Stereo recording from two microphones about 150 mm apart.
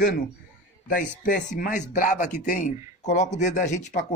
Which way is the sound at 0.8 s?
65° left (ahead or behind).